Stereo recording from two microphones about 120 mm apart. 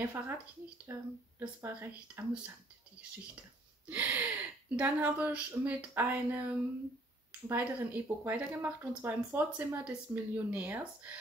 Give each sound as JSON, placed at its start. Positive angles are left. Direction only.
{"t": 0.9, "sound": "speech", "side_deg": -15}
{"t": 3.9, "sound": "speech", "side_deg": -15}